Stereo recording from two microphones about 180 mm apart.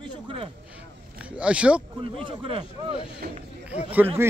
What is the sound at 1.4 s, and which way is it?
Speech, 5° right (ahead or behind).